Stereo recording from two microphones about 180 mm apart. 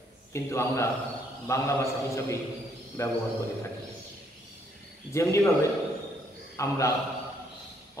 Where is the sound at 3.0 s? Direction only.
15° left (ahead or behind).